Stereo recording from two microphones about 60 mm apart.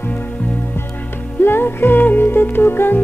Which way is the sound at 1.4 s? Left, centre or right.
Left.